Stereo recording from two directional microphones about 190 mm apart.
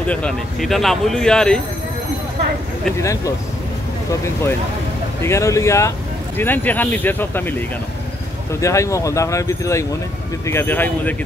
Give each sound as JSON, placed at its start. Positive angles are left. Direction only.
{"t": 0.0, "sound": "speech", "side_deg": 5}
{"t": 3.0, "sound": "speech", "side_deg": 15}
{"t": 8.5, "sound": "speech", "side_deg": 15}